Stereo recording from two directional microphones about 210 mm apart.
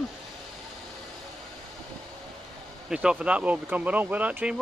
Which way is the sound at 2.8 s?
5° right (ahead or behind).